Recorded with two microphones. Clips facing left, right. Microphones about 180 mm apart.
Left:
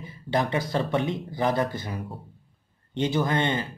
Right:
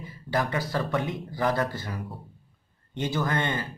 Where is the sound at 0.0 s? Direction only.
25° left (ahead or behind).